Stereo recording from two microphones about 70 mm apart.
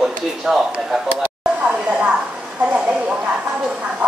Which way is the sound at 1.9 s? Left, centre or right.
Centre.